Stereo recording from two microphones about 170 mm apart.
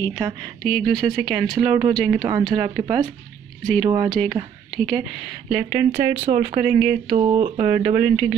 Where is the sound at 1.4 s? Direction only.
25° right (ahead or behind).